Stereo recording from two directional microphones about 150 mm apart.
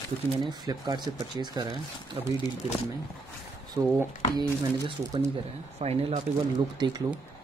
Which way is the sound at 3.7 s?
25° right (ahead or behind).